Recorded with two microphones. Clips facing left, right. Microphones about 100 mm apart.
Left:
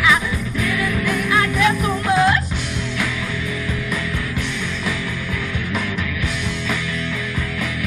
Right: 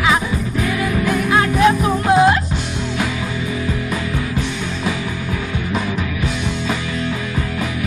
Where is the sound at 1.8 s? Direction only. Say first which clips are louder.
Right 4 dB; 25° right (ahead or behind).